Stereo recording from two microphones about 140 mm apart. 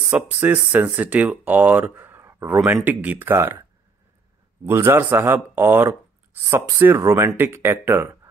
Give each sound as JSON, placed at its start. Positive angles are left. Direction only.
{"t": 0.1, "sound": "speech", "side_deg": -15}
{"t": 4.6, "sound": "speech", "side_deg": -15}